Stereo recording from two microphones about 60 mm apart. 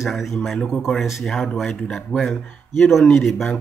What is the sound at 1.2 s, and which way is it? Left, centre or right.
Speech, centre.